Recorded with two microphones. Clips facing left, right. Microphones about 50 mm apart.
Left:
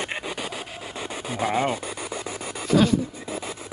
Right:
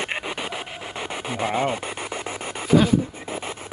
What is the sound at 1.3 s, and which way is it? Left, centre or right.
Speech, right.